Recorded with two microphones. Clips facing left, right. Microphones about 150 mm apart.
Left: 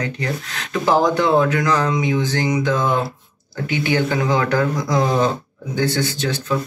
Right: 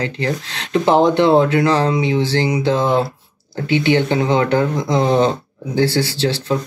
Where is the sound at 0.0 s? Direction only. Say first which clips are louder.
Right 3 dB; 30° right (ahead or behind).